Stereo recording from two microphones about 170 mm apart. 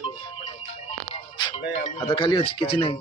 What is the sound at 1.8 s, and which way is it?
Speech, 30° left (ahead or behind).